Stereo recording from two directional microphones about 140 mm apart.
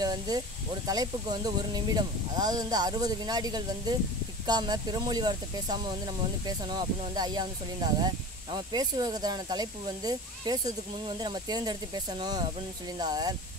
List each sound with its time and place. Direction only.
0.0 s speech: 30° right (ahead or behind)